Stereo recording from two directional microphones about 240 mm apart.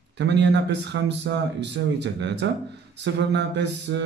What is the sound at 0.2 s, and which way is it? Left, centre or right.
A man's voice, right.